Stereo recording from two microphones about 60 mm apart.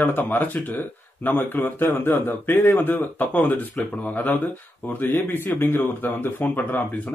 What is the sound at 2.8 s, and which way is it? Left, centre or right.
A man's voice, left.